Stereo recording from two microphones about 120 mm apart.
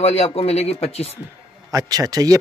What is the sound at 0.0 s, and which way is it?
Speech, 60° left (ahead or behind).